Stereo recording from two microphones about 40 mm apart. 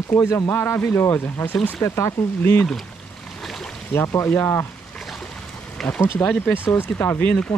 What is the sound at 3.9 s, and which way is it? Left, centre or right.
Speech, left.